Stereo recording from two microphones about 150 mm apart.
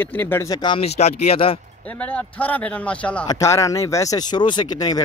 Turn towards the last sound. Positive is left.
turn(degrees=25)  # may be behind; listen again after turning